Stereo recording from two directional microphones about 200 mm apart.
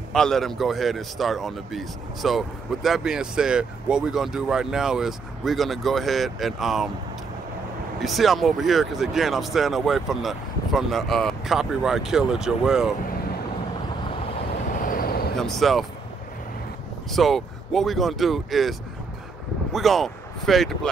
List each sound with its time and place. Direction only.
0.1 s speech: centre (ahead or behind)
8.0 s speech: centre (ahead or behind)
14.9 s a sound: 50° left (ahead or behind)
15.3 s speech: centre (ahead or behind)
17.1 s speech: centre (ahead or behind)